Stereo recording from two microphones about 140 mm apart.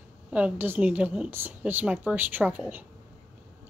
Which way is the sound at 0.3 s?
10° right (ahead or behind).